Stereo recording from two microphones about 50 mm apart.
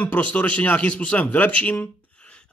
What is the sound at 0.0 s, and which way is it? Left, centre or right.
A man's voice, left.